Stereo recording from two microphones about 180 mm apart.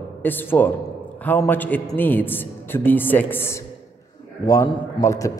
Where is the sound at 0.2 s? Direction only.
10° left (ahead or behind).